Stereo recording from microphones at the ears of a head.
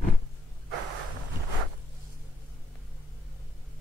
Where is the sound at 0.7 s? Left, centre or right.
Right.